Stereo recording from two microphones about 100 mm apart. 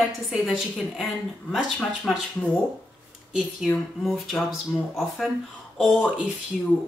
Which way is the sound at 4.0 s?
Centre (ahead or behind).